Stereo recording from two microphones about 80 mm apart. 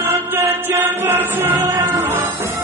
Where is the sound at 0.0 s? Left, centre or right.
Right.